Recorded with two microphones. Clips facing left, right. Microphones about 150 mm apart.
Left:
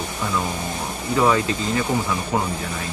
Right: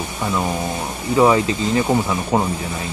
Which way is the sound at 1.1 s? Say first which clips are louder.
Right 4 dB; 20° right (ahead or behind).